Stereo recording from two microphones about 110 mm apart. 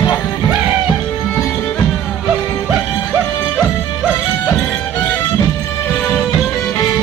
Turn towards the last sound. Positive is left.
turn(degrees=15)  # may be behind; listen again after turning